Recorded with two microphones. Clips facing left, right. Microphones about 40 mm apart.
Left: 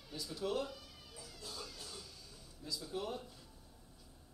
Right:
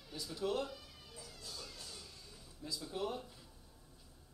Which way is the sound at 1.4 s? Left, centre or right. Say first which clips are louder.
Left 3 dB; left.